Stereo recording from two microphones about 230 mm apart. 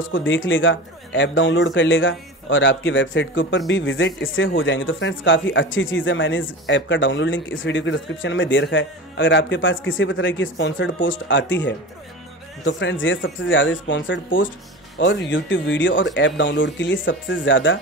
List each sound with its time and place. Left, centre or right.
0.1 s a man's voice: left